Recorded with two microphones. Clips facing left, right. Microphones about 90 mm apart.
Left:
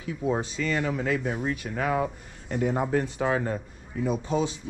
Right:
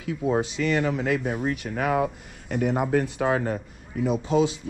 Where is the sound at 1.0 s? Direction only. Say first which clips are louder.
Right 2 dB; 75° right (ahead or behind).